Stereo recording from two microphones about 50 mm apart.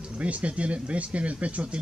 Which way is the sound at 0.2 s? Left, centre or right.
Right.